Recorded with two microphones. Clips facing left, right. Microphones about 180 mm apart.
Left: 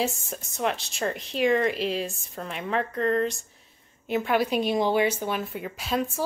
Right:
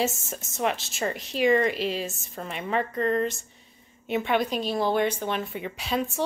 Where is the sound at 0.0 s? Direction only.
Centre (ahead or behind).